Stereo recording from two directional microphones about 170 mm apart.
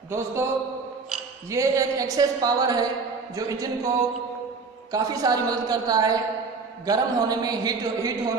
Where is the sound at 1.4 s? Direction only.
20° right (ahead or behind).